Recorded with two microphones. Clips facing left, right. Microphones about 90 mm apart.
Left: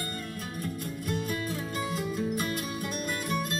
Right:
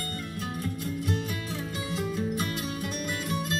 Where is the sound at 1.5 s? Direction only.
50° left (ahead or behind).